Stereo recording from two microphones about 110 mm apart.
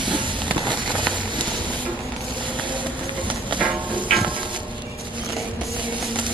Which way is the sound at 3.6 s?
10° right (ahead or behind).